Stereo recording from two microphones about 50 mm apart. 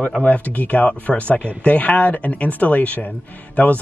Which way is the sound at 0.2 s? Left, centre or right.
Left.